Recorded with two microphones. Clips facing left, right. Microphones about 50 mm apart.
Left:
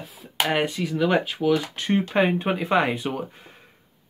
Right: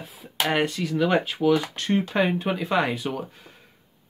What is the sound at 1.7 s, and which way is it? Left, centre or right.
Speech, centre.